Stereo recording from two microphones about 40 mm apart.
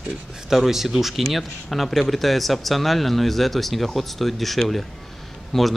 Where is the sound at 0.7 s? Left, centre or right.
Centre.